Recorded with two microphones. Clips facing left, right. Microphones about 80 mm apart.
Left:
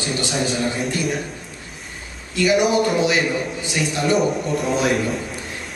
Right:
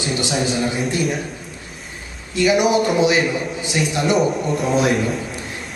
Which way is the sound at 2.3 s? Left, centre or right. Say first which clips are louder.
Right 1 dB; right.